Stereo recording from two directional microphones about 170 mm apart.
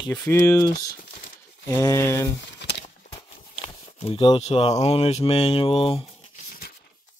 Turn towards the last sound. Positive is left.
turn(degrees=35)  # may be behind; listen again after turning